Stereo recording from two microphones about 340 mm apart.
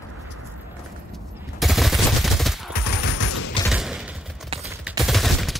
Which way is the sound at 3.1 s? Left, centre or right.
Left.